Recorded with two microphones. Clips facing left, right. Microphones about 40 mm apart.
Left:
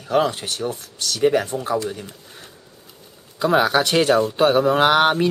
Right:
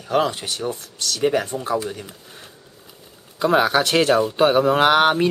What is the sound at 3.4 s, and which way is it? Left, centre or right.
Speech, centre.